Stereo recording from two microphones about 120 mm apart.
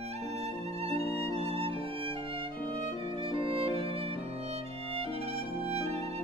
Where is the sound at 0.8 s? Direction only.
55° right (ahead or behind).